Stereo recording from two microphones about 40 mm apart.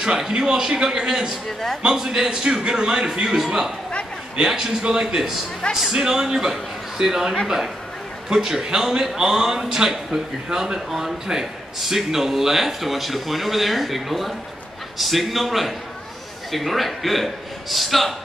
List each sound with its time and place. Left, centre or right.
0.4 s a man's voice: centre
5.7 s a man's voice: centre